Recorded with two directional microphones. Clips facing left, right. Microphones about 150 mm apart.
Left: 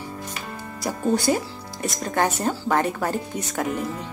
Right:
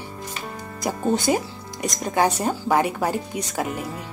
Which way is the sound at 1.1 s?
20° right (ahead or behind).